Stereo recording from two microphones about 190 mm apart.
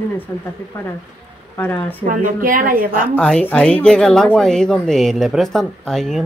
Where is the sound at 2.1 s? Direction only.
45° right (ahead or behind).